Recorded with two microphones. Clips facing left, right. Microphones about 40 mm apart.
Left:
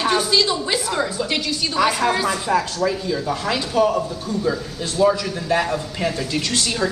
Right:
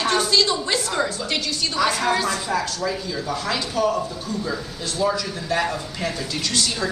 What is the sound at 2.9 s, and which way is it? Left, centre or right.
A man's voice, centre.